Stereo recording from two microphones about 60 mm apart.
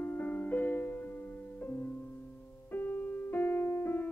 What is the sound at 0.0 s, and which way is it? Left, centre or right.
Music, left.